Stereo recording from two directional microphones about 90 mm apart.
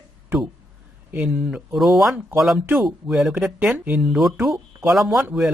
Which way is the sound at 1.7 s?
Centre (ahead or behind).